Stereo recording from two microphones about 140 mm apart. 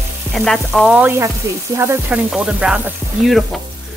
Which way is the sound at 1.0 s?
20° right (ahead or behind).